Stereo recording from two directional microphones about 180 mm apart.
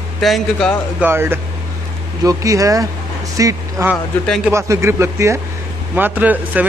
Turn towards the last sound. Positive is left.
turn(degrees=-10)  # may be behind; listen again after turning